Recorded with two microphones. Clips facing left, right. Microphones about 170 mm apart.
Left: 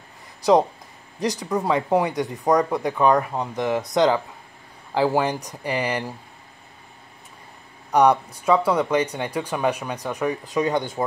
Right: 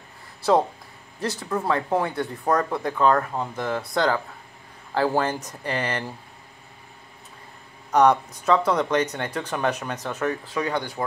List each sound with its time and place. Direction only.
0.4 s speech: 15° left (ahead or behind)
7.9 s speech: 10° left (ahead or behind)